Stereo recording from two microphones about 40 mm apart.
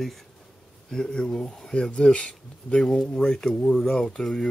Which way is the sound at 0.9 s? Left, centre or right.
Centre.